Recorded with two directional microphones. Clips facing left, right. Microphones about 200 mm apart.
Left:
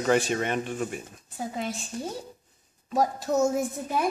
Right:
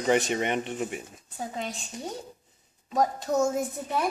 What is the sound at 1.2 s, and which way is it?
A woman's voice, 5° left (ahead or behind).